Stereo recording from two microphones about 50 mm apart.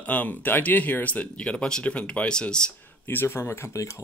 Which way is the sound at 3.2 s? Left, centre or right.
Left.